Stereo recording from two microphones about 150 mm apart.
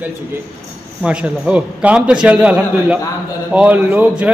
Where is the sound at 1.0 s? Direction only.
5° right (ahead or behind).